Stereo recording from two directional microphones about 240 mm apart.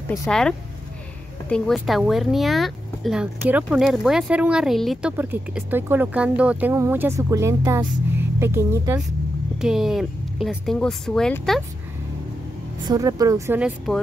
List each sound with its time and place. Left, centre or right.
0.1 s speech: centre
12.8 s speech: centre